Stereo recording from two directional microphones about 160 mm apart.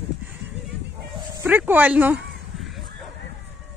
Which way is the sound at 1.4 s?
10° right (ahead or behind).